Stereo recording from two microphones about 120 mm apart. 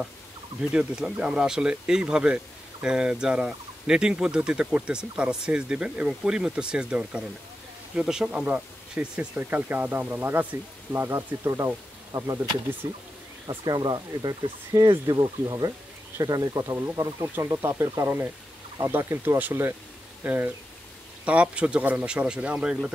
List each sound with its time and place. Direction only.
0.6 s speech: 5° right (ahead or behind); by 13.0 s 25° right (ahead or behind)
13.5 s speech: 35° right (ahead or behind); by 22.9 s 10° right (ahead or behind)